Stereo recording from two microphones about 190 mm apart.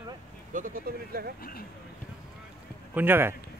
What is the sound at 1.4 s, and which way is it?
Speech, 50° left (ahead or behind).